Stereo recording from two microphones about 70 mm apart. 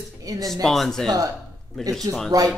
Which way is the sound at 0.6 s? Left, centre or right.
Centre.